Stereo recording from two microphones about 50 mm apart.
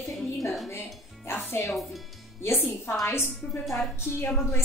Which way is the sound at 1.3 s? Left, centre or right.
Left.